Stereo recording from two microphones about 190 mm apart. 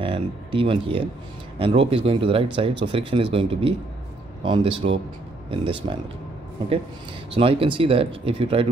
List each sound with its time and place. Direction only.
0.0 s speech: 25° right (ahead or behind)
7.3 s speech: 30° right (ahead or behind)